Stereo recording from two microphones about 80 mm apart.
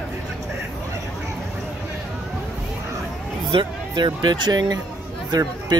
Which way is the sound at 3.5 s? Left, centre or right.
Right.